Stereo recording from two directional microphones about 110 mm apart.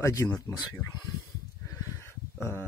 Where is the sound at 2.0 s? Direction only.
20° left (ahead or behind).